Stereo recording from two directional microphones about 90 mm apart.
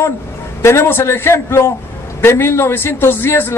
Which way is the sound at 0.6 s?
25° left (ahead or behind).